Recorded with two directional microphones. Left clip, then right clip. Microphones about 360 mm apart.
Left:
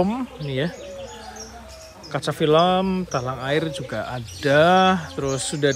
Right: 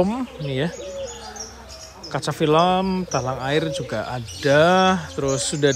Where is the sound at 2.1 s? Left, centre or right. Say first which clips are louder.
Even; centre.